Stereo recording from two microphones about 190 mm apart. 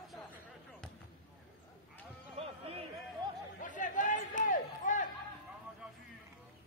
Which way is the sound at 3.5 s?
40° left (ahead or behind).